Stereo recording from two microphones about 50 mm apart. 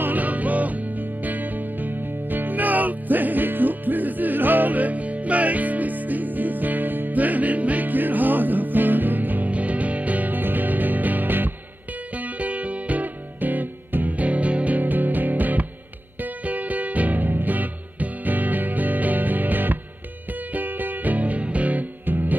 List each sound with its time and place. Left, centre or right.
0.0 s music: right
12.2 s music: right